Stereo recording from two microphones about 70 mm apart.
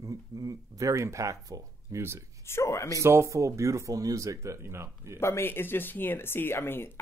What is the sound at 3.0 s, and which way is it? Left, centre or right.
Speech, right.